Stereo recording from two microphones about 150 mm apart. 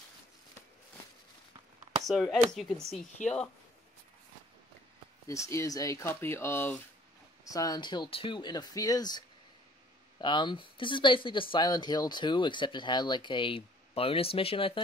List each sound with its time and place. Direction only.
2.0 s speech: centre (ahead or behind)
3.2 s speech: 55° left (ahead or behind)
5.3 s speech: 20° left (ahead or behind)
10.2 s speech: 30° left (ahead or behind)